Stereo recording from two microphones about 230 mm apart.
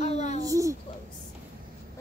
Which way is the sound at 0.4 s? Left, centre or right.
Centre.